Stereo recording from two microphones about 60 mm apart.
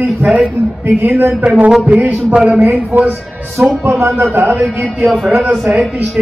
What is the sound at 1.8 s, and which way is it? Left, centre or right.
Speech, right.